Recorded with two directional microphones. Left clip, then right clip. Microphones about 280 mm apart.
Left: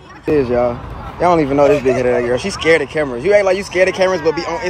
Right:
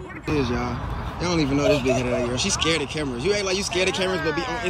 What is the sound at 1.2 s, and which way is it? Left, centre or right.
A man's voice, centre.